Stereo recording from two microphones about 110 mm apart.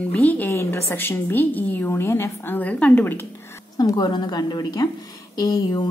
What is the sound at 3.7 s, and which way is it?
A woman's voice, 40° left (ahead or behind).